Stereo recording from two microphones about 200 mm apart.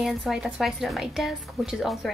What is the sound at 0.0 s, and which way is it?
Speech, centre (ahead or behind).